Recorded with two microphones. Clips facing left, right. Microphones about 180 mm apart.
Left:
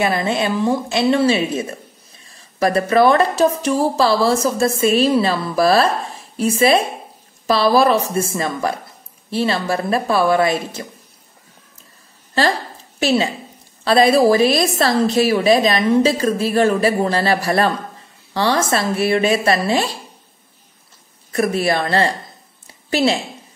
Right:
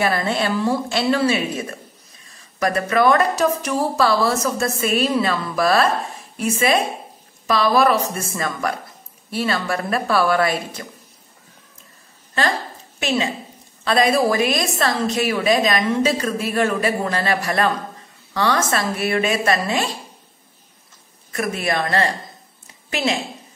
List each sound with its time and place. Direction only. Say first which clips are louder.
0.0 s a woman's voice: left 2 dB; 20° left (ahead or behind)
13.0 s a woman's voice: left 4 dB; 35° left (ahead or behind)
21.3 s a woman's voice: left 5 dB; 35° left (ahead or behind)